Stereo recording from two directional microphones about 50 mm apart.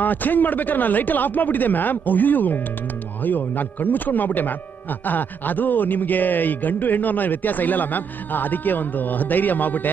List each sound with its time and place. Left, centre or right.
0.0 s speech: left